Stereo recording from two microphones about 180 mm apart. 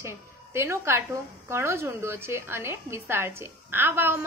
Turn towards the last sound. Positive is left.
turn(degrees=-10)  # may be behind; listen again after turning